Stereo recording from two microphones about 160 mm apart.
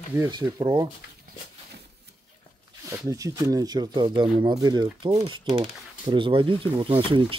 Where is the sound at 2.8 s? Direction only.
20° right (ahead or behind).